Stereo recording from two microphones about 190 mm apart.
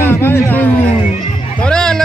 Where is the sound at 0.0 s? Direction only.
10° left (ahead or behind).